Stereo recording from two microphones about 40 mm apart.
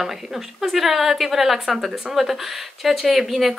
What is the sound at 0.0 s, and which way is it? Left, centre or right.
A woman's voice, centre.